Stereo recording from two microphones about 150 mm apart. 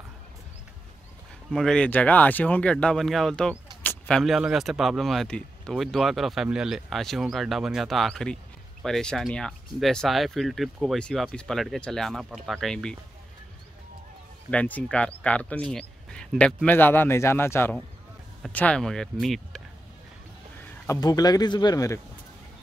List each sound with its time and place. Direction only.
1.5 s speech: 5° left (ahead or behind)
3.8 s a sound: 10° left (ahead or behind)
4.2 s speech: centre (ahead or behind)
14.5 s speech: 10° left (ahead or behind)
20.8 s speech: 25° left (ahead or behind)